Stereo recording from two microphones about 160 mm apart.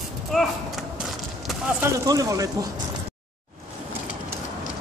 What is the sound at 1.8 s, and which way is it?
Speech, 20° right (ahead or behind).